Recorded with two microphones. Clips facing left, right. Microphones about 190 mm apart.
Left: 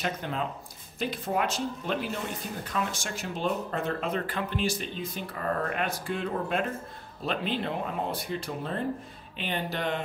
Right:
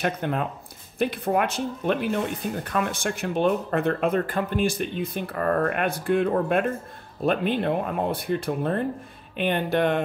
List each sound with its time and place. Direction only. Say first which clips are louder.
0.0 s speech: right 6 dB; 55° right (ahead or behind)